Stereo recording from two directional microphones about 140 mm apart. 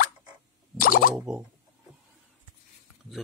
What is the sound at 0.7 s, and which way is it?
Plop, 90° left.